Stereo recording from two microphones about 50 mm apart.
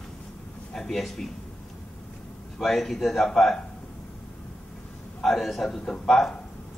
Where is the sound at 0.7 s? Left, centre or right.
Centre.